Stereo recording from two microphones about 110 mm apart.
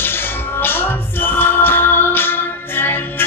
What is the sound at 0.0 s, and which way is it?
Music, 20° left (ahead or behind).